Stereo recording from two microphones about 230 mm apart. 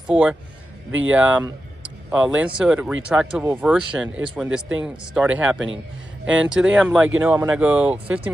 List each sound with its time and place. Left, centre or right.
0.0 s a man's voice: centre